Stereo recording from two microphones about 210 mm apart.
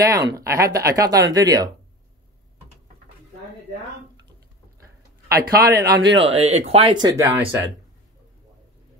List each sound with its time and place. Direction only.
0.0 s speech: 15° right (ahead or behind)
5.3 s speech: 45° right (ahead or behind)
6.2 s speech: 30° right (ahead or behind)